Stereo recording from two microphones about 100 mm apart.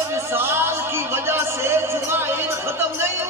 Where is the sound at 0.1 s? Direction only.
25° right (ahead or behind).